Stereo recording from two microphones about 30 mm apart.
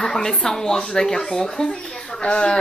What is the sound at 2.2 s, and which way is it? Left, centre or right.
Speech, left.